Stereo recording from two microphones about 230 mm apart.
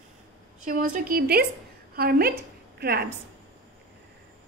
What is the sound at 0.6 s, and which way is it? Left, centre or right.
A woman's voice, right.